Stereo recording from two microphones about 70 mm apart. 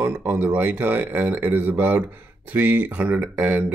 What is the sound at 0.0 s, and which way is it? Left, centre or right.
Speech, right.